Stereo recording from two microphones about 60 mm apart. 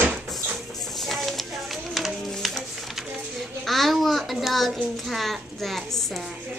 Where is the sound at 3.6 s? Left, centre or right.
Centre.